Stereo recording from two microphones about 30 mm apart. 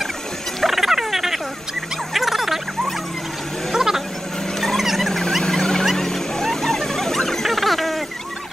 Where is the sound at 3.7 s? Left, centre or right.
Centre.